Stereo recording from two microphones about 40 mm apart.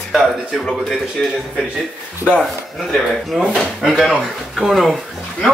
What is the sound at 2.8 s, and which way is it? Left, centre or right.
Speech, centre.